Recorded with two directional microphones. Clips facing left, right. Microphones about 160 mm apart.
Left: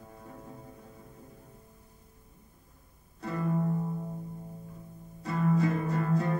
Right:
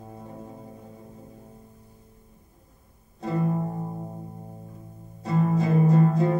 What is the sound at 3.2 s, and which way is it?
Music, 25° right (ahead or behind).